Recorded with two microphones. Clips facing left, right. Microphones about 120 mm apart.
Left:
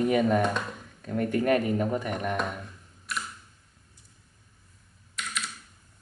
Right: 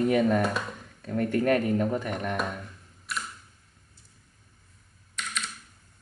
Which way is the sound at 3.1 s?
Centre (ahead or behind).